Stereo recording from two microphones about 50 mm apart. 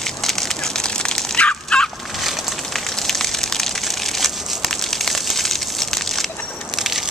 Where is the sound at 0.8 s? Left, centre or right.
Centre.